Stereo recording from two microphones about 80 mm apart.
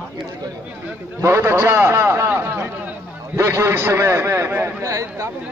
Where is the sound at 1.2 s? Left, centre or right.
Right.